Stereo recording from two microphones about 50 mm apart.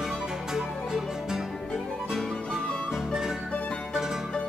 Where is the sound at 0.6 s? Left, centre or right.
Centre.